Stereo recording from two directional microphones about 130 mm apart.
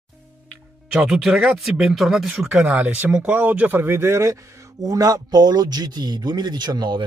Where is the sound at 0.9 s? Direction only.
5° right (ahead or behind).